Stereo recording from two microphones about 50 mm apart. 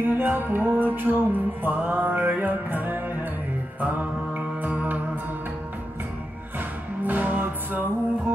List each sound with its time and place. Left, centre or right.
0.0 s music: right
3.8 s mantra: right
7.1 s music: right